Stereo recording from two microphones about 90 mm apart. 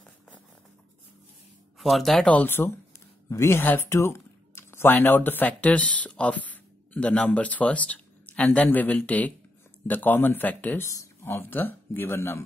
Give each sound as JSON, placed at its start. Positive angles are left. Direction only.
{"t": 1.8, "sound": "speech", "side_deg": 0}
{"t": 2.2, "sound": "speech", "side_deg": 20}
{"t": 10.8, "sound": "speech", "side_deg": 40}
{"t": 11.2, "sound": "speech", "side_deg": 25}